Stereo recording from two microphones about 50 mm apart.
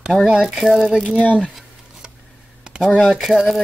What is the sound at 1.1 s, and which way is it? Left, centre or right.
Speech, left.